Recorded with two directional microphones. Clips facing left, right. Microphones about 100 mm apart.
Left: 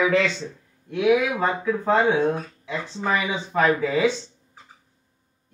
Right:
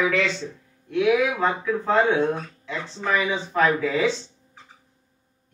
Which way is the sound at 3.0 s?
10° left (ahead or behind).